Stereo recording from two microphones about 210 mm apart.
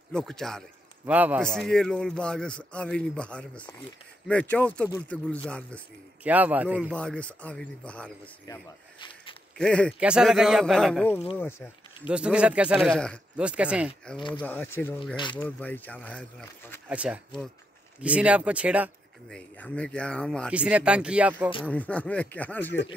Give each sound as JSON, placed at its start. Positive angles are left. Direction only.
{"t": 0.1, "sound": "a man's voice", "side_deg": 0}
{"t": 6.2, "sound": "speech", "side_deg": -5}
{"t": 7.0, "sound": "speech", "side_deg": 5}
{"t": 9.6, "sound": "speech", "side_deg": 5}
{"t": 12.1, "sound": "speech", "side_deg": -5}
{"t": 14.1, "sound": "speech", "side_deg": 25}
{"t": 14.4, "sound": "speech", "side_deg": 10}
{"t": 15.1, "sound": "speech", "side_deg": 20}
{"t": 15.4, "sound": "speech", "side_deg": 10}
{"t": 16.9, "sound": "speech", "side_deg": -5}
{"t": 19.3, "sound": "speech", "side_deg": 5}
{"t": 21.6, "sound": "speech", "side_deg": 5}